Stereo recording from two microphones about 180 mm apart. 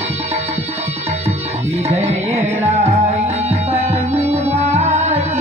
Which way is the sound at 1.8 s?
35° right (ahead or behind).